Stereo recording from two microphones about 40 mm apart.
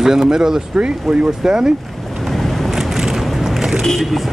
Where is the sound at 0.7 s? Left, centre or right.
Right.